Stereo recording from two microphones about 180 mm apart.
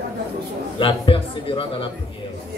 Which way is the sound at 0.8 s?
30° left (ahead or behind).